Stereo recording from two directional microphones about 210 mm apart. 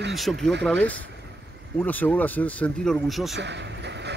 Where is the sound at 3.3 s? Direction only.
55° right (ahead or behind).